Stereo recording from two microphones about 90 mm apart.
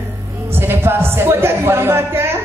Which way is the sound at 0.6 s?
25° right (ahead or behind).